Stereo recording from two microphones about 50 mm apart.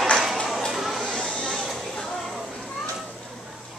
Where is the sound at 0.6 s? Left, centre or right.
Centre.